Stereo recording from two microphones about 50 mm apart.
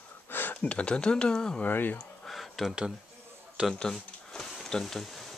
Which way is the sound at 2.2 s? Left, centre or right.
Centre.